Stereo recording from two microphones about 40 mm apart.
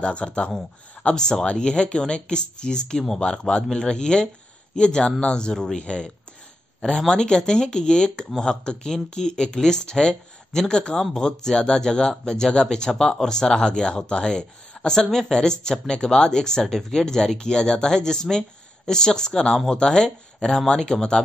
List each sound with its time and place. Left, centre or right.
0.0 s speech: left